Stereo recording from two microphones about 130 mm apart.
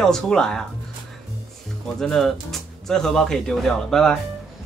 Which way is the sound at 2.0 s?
5° left (ahead or behind).